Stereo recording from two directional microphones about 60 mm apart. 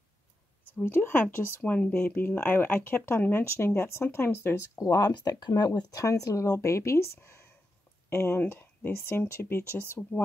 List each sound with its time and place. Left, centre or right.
0.8 s speech: left
1.6 s speech: left
1.9 s speech: left
4.7 s speech: left
7.2 s speech: left